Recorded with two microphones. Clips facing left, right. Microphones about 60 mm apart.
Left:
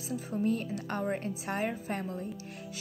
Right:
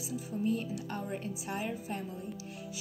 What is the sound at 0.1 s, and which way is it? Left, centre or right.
Speech, left.